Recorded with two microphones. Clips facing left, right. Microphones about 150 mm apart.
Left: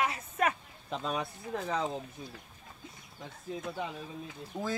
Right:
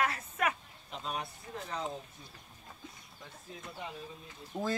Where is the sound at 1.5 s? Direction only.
85° left.